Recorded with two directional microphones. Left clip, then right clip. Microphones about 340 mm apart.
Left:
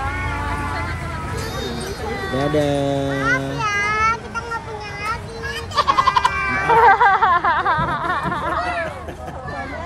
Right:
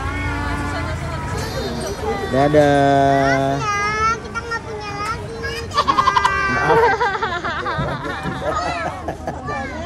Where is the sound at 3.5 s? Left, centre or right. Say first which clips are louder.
Even; centre.